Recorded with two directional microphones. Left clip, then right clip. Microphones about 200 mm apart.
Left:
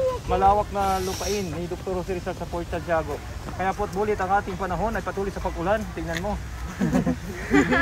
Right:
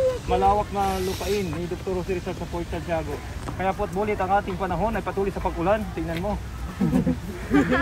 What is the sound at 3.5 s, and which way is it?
Speech, centre (ahead or behind).